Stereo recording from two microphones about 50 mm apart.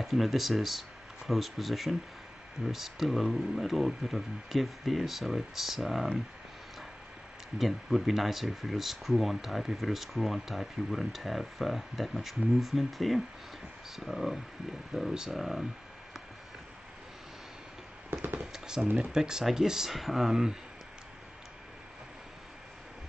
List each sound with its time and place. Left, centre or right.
0.0 s speech: centre
7.5 s speech: centre
18.2 s a sound: right
18.8 s speech: right
19.0 s speech: centre